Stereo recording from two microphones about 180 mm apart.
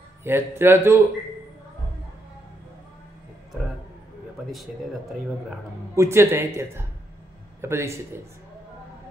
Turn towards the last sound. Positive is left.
turn(degrees=-15)  # may be behind; listen again after turning